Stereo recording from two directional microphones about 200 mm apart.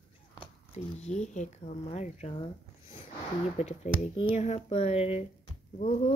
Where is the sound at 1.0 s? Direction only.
35° left (ahead or behind).